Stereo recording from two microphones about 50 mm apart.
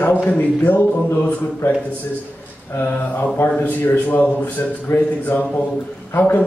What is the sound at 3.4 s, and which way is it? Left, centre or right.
A woman's voice, left.